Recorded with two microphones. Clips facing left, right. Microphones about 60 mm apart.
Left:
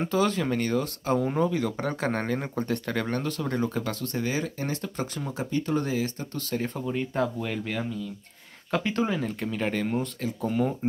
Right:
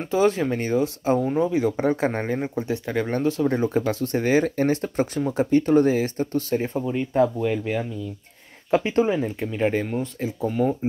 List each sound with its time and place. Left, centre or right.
0.1 s speech: right
2.4 s speech: centre
3.1 s speech: right
6.7 s speech: centre
10.4 s speech: centre